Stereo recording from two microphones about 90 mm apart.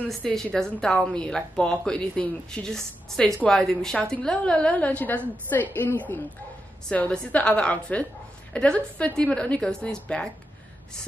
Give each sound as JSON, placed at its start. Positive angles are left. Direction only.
{"t": 0.1, "sound": "a woman's voice", "side_deg": 5}